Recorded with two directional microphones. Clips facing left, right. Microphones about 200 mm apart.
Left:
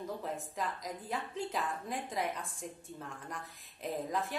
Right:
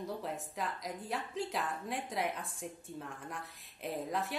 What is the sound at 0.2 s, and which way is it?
A woman's voice, centre (ahead or behind).